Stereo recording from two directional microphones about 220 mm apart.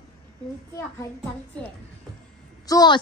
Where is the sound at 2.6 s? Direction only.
15° left (ahead or behind).